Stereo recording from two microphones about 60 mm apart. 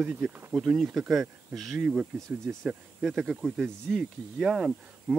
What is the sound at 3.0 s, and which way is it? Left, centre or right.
Speech, centre.